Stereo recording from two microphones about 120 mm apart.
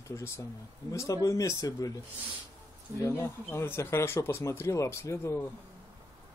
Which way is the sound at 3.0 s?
25° left (ahead or behind).